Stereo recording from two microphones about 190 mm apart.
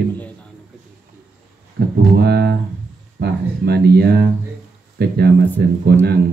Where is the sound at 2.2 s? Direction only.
55° right (ahead or behind).